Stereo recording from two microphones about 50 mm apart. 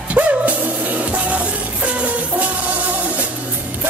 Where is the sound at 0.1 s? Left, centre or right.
Right.